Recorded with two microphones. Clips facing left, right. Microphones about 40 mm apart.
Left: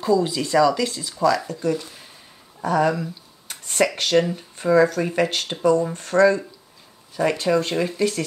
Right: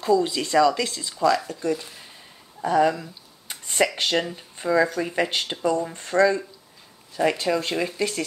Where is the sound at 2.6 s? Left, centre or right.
Centre.